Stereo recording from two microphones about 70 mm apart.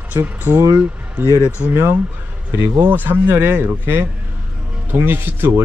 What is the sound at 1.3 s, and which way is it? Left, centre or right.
Speech, left.